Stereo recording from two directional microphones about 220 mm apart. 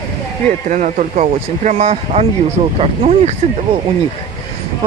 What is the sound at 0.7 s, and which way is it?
Speech, 35° right (ahead or behind).